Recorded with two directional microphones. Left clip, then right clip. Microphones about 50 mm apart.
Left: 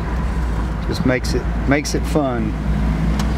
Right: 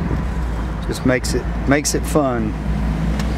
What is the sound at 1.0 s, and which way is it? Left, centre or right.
Speech, right.